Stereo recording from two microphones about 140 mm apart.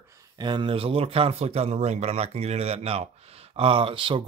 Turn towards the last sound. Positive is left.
turn(degrees=-40)  # may be behind; listen again after turning